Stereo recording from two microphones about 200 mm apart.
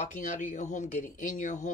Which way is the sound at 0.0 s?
40° left (ahead or behind).